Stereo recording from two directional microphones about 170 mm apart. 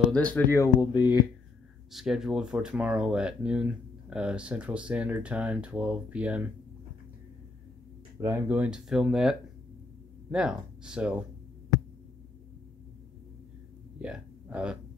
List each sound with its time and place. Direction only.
0.1 s speech: 10° left (ahead or behind); by 1.2 s 25° left (ahead or behind)
1.9 s speech: centre (ahead or behind)
8.2 s speech: 10° right (ahead or behind)
13.9 s speech: 5° right (ahead or behind)